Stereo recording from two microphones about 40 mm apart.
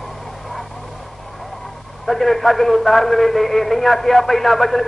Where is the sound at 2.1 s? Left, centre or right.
Centre.